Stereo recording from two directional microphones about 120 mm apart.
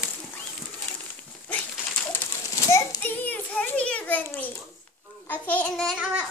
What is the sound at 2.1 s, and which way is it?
Children playing, 15° left (ahead or behind).